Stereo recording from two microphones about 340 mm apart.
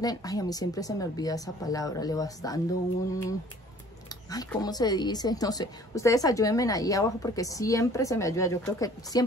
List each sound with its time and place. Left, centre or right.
0.0 s a woman's voice: centre